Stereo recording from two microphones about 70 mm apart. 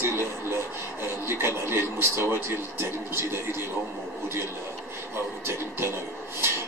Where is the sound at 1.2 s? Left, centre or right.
Right.